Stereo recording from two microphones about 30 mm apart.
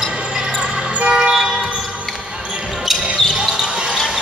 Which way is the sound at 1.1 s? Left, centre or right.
Right.